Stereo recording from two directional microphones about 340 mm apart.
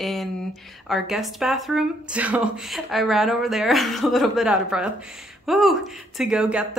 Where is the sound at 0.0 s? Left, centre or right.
Centre.